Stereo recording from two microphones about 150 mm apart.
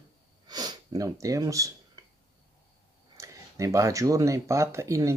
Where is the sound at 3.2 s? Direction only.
20° right (ahead or behind).